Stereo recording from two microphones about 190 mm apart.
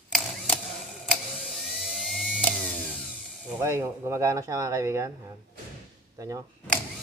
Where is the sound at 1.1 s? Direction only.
Centre (ahead or behind).